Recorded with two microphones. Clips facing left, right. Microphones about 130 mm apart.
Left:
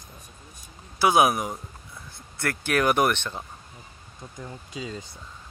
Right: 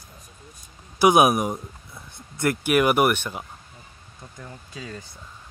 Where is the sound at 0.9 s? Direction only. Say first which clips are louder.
Right 3 dB; 20° right (ahead or behind).